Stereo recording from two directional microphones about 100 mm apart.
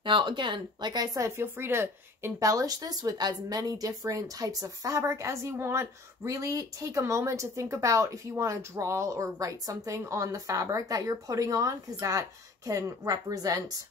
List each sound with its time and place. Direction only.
0.0 s a woman's voice: 55° right (ahead or behind); by 13.7 s 35° right (ahead or behind)